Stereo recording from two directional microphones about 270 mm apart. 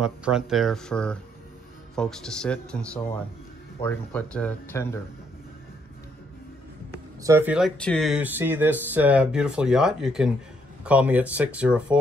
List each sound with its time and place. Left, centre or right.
0.0 s speech: centre
7.2 s speech: centre